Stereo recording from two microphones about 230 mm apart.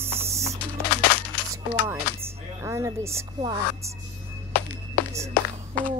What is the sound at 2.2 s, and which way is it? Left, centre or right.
Music, centre.